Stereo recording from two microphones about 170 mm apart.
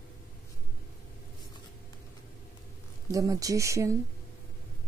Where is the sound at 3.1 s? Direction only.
20° right (ahead or behind).